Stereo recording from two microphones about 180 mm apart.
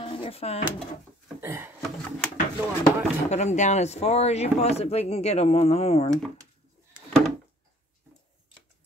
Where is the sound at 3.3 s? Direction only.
40° left (ahead or behind).